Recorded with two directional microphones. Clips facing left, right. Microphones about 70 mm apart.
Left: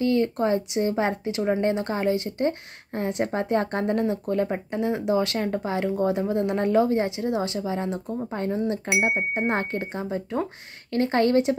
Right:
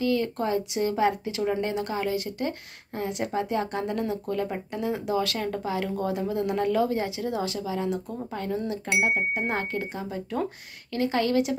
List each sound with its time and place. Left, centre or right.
0.0 s speech: left